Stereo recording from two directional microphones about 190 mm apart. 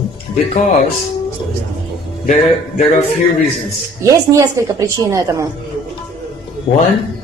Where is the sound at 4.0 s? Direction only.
15° right (ahead or behind).